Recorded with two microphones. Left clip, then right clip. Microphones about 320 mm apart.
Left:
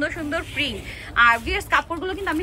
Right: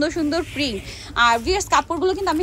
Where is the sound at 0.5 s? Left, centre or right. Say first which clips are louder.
Right 1 dB; right.